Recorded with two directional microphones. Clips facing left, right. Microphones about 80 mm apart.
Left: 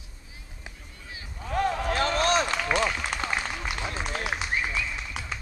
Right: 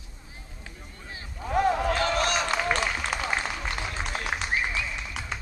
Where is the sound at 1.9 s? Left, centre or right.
Left.